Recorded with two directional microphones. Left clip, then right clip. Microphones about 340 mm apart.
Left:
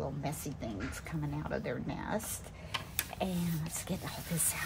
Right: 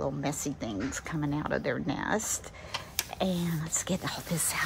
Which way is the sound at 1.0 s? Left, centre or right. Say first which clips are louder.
Right 8 dB; right.